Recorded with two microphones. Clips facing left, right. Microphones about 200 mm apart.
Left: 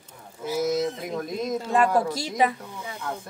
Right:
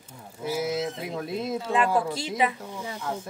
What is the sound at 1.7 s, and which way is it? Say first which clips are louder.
Speech: left 3 dB; 45° left (ahead or behind).